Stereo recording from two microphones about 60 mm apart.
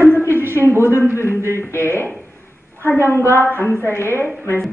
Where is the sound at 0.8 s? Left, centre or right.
Left.